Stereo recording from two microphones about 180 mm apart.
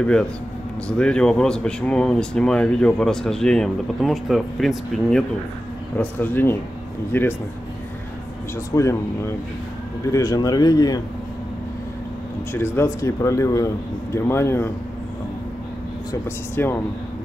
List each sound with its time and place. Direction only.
0.0 s speech: 5° left (ahead or behind)
8.7 s speech: 15° left (ahead or behind)
12.5 s speech: 15° left (ahead or behind)
16.1 s speech: 15° left (ahead or behind)